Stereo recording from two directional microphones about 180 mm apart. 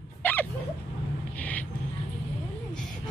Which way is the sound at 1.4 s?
10° left (ahead or behind).